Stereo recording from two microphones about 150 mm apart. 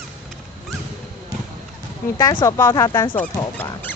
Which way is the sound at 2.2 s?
25° left (ahead or behind).